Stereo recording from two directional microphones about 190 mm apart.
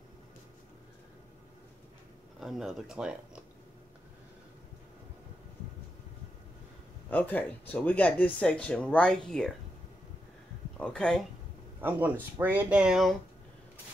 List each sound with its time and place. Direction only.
2.4 s speech: centre (ahead or behind)
7.1 s speech: 10° left (ahead or behind)
10.8 s speech: 5° left (ahead or behind)
11.8 s speech: 10° right (ahead or behind)